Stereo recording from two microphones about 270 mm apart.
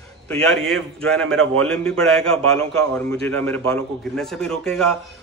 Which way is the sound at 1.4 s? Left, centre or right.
Right.